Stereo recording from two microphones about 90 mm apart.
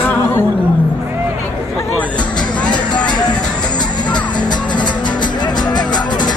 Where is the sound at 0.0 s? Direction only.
25° left (ahead or behind).